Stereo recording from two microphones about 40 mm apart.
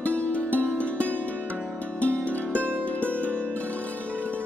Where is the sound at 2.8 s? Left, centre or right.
Left.